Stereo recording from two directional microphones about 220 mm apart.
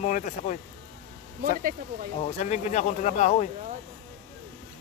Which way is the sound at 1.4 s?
40° right (ahead or behind).